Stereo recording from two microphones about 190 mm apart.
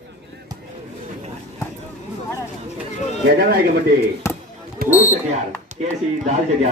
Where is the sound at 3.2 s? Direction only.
55° right (ahead or behind).